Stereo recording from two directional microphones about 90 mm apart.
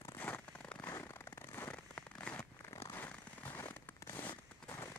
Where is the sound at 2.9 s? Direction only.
25° left (ahead or behind).